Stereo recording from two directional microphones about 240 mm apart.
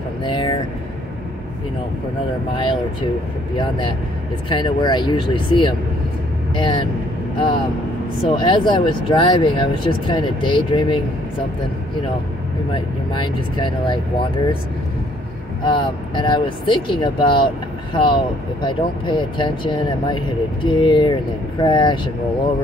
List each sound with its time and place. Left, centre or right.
0.2 s vehicle: centre
2.5 s speech: left
12.7 s speech: centre
15.6 s speech: left